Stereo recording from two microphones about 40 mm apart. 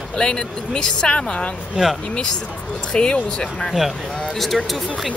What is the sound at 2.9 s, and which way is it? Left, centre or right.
Speech, left.